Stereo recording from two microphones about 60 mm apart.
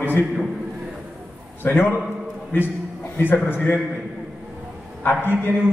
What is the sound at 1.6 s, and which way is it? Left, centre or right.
A man's voice, left.